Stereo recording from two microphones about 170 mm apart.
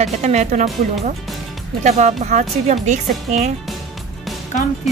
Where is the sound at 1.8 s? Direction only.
40° right (ahead or behind).